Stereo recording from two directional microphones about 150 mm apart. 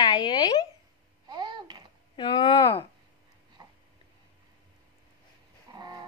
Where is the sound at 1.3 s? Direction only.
30° right (ahead or behind).